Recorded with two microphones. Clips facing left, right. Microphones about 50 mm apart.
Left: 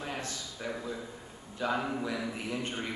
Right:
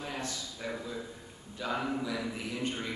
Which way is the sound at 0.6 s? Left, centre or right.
Centre.